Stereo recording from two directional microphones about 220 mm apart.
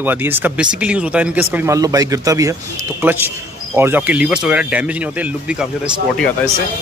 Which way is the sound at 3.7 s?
10° right (ahead or behind).